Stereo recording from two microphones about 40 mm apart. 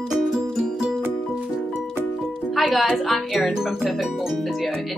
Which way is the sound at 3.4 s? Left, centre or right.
Centre.